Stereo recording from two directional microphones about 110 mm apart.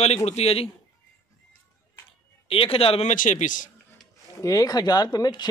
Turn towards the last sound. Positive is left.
turn(degrees=40)  # may be behind; listen again after turning